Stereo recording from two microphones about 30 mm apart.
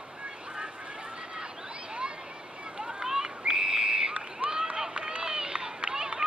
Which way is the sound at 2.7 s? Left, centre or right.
Right.